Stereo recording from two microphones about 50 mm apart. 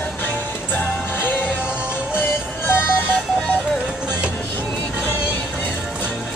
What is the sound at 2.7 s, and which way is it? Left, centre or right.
Music, left.